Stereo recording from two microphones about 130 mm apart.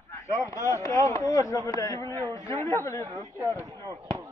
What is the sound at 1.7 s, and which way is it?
Speech, 25° left (ahead or behind).